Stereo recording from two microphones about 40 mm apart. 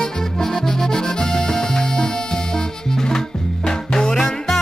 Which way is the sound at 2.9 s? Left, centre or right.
Centre.